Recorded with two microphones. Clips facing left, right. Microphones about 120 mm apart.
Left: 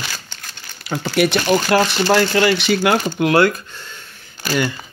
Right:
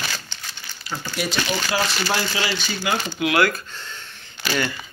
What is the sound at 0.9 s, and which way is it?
Speech, 70° left (ahead or behind).